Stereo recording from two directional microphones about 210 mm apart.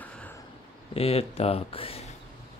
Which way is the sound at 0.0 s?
5° left (ahead or behind).